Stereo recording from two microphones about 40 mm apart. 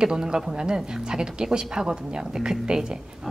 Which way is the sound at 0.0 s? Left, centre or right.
Centre.